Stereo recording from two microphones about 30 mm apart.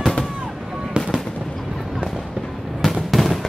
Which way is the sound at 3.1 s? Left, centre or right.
Centre.